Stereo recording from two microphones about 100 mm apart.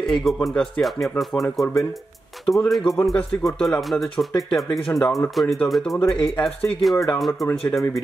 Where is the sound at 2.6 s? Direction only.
Centre (ahead or behind).